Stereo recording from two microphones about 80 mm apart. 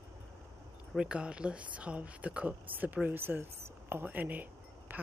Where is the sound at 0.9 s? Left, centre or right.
Centre.